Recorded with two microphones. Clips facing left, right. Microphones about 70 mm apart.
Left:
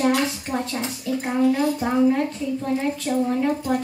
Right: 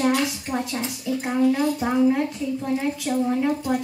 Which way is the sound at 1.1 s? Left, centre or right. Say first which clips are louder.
Even; centre.